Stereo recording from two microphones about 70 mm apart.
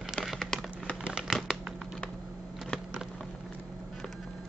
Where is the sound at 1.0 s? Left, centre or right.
Centre.